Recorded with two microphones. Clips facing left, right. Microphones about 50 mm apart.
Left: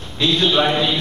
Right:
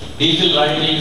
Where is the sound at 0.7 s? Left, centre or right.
Left.